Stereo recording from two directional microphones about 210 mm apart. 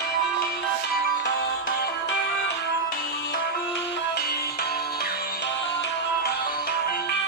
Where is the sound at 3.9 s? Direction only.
55° left (ahead or behind).